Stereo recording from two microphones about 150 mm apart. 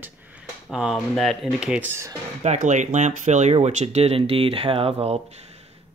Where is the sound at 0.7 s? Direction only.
Centre (ahead or behind).